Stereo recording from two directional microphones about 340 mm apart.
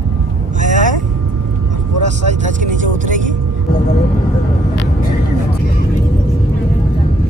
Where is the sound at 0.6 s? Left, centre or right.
Right.